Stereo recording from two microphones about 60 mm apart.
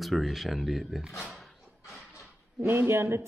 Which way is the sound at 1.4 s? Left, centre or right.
Centre.